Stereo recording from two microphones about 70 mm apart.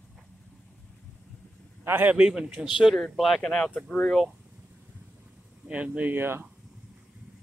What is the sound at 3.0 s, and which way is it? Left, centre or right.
Speech, centre.